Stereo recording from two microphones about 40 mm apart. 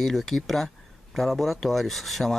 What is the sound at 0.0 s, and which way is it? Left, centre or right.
Speech, centre.